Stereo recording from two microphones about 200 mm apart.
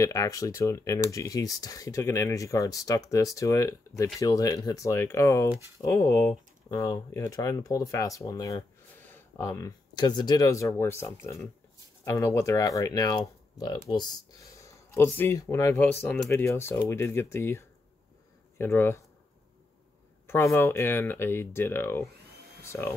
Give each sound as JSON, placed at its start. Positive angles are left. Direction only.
{"t": 0.0, "sound": "speech", "side_deg": 15}
{"t": 20.2, "sound": "speech", "side_deg": 10}